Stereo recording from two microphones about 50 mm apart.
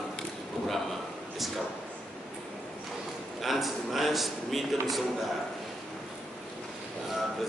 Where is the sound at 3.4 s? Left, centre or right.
Centre.